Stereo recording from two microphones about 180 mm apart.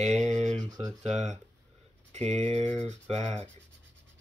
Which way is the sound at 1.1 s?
40° right (ahead or behind).